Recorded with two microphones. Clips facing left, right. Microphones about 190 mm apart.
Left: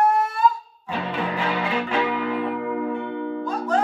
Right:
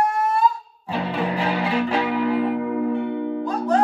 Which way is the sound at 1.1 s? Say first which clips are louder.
Right 2 dB; 35° right (ahead or behind).